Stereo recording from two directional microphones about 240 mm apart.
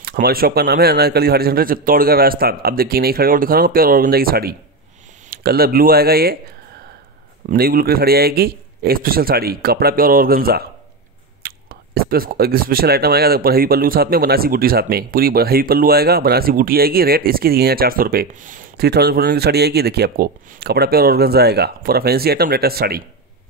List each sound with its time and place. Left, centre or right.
0.0 s speech: right
7.4 s speech: right